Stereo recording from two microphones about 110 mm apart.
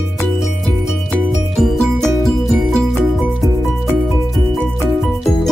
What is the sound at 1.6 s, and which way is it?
Music, centre (ahead or behind).